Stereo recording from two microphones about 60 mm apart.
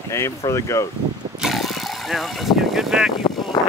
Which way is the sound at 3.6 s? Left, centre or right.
Left.